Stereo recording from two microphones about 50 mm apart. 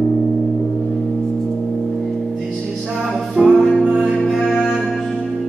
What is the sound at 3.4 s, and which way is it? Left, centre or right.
Music, right.